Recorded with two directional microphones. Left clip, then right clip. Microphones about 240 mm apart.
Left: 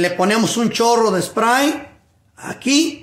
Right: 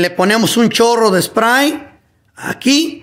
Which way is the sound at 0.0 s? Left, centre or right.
Right.